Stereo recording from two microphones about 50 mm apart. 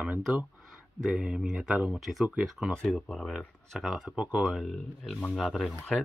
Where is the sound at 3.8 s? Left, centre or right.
Centre.